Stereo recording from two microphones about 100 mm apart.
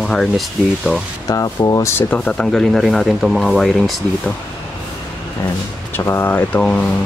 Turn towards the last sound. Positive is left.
turn(degrees=5)  # may be behind; listen again after turning